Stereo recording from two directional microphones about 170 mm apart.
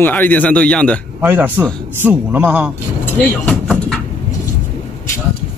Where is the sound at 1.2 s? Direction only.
10° right (ahead or behind).